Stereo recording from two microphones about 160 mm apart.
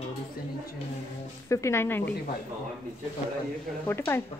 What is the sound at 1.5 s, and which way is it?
Speech, 15° left (ahead or behind).